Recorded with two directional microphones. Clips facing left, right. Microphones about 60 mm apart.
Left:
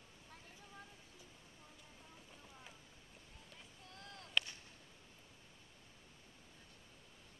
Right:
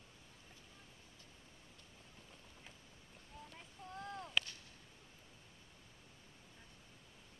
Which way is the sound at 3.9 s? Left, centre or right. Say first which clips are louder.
Right 10 dB; right.